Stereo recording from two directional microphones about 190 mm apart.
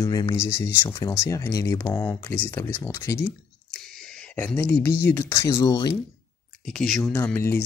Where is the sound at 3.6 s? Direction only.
Centre (ahead or behind).